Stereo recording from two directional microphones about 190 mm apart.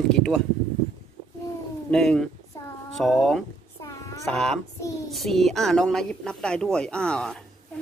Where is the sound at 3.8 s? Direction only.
15° left (ahead or behind).